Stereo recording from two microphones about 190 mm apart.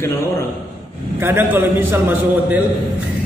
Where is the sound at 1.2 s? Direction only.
10° right (ahead or behind).